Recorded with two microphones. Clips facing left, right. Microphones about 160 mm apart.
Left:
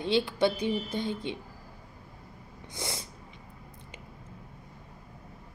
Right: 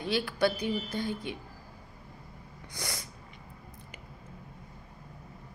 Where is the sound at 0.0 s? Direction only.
25° left (ahead or behind).